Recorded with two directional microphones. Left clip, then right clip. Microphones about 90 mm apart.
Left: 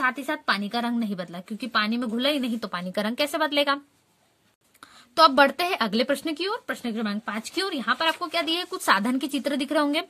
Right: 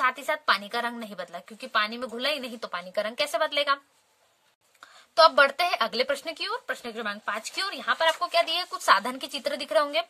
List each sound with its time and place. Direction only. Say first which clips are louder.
0.0 s a woman's voice: even; 5° right (ahead or behind)
1.6 s speech: left 1 dB; 20° left (ahead or behind)
2.8 s speech: right 1 dB; 35° left (ahead or behind)
3.2 s speech: left 3 dB; 25° left (ahead or behind)
5.1 s speech: left 1 dB; 25° left (ahead or behind)